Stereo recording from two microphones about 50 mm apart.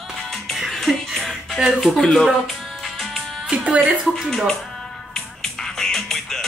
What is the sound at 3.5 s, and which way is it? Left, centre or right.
Speech, right.